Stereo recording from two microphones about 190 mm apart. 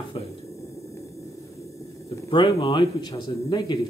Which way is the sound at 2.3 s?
25° left (ahead or behind).